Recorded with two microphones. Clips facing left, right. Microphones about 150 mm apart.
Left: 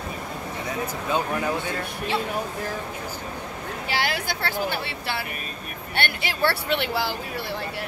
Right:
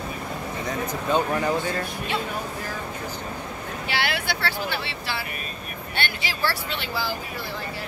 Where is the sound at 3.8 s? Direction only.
40° left (ahead or behind).